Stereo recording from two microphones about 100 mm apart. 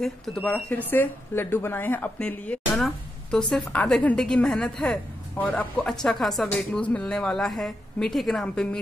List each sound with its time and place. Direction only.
0.0 s a woman's voice: 5° left (ahead or behind)
6.0 s a woman's voice: 5° left (ahead or behind)